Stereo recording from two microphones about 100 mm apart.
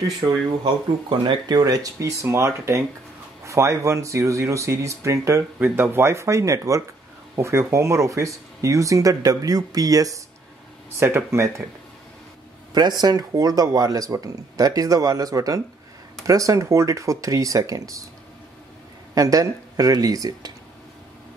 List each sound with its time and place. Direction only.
1.0 s speech: 50° right (ahead or behind)
1.6 s speech: 35° right (ahead or behind)
12.7 s speech: 45° right (ahead or behind)
19.1 s speech: 35° right (ahead or behind)